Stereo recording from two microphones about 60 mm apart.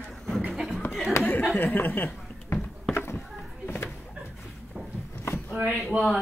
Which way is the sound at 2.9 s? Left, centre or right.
Left.